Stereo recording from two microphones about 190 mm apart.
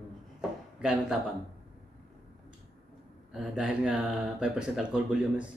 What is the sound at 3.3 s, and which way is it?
Speech, 5° right (ahead or behind).